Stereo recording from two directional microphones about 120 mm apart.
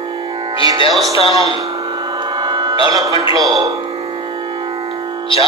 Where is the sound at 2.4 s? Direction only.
40° right (ahead or behind).